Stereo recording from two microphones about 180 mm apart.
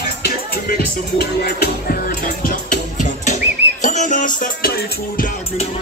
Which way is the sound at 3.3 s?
40° left (ahead or behind).